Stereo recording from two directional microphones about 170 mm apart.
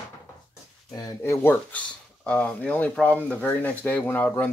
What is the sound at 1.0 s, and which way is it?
Speech, 20° left (ahead or behind).